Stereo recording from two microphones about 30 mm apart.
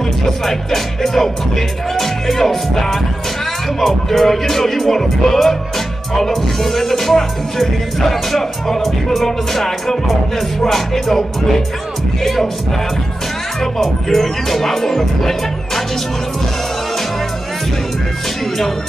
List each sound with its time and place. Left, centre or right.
0.5 s music: centre
14.0 s music: centre